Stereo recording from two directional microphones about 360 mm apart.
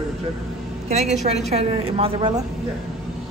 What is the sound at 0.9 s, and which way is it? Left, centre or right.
A woman's voice, centre.